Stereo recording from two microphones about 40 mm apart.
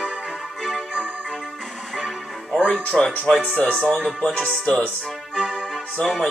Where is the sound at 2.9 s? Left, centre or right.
Centre.